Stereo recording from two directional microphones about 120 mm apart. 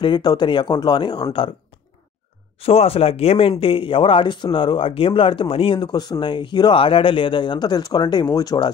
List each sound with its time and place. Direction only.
0.0 s speech: 40° left (ahead or behind)
2.6 s speech: 55° left (ahead or behind); by 8.7 s 35° left (ahead or behind)